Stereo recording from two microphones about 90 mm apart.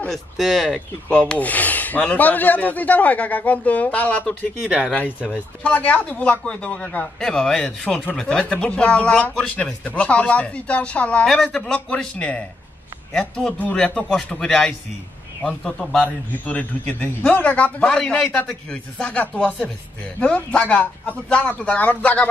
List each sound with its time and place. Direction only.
0.1 s a man's voice: centre (ahead or behind)
11.2 s a man's voice: 5° left (ahead or behind)
16.0 s a man's voice: 15° left (ahead or behind)